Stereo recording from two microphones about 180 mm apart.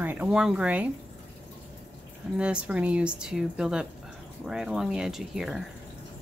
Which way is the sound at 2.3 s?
5° right (ahead or behind).